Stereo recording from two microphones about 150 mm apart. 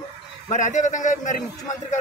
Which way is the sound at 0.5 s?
55° left (ahead or behind).